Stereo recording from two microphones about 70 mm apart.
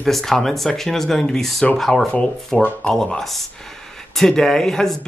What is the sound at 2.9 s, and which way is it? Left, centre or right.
Speech, centre.